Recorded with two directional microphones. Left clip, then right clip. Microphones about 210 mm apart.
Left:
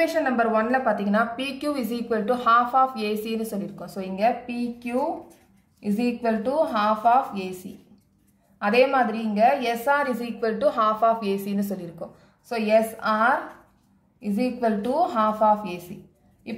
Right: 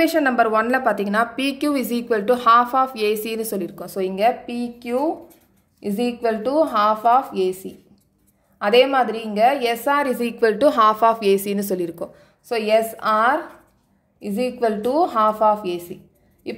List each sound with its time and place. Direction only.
0.0 s a woman's voice: 55° right (ahead or behind)
8.5 s a woman's voice: 45° right (ahead or behind)